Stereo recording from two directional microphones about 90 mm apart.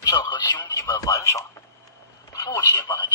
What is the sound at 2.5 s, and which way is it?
Telephone, 55° left (ahead or behind).